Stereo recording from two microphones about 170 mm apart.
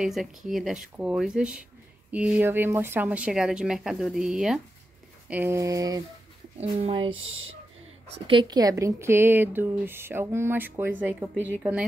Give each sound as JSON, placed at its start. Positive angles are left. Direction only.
{"t": 0.0, "sound": "speech", "side_deg": 0}
{"t": 5.3, "sound": "speech", "side_deg": -15}
{"t": 6.6, "sound": "speech", "side_deg": -35}